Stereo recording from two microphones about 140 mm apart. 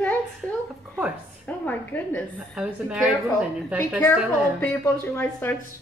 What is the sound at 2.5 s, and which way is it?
Speech, 5° right (ahead or behind).